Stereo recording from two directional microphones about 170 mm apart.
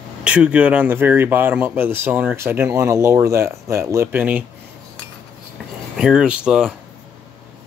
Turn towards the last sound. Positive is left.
turn(degrees=-5)  # may be behind; listen again after turning